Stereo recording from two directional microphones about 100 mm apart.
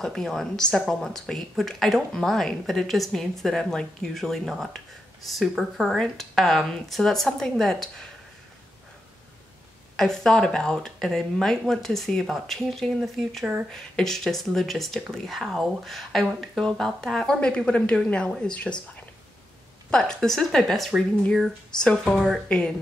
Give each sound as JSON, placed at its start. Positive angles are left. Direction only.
{"t": 0.0, "sound": "a woman's voice", "side_deg": 5}
{"t": 9.9, "sound": "a woman's voice", "side_deg": 5}
{"t": 19.9, "sound": "a woman's voice", "side_deg": 5}